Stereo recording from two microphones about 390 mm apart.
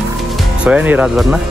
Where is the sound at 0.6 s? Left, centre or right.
Centre.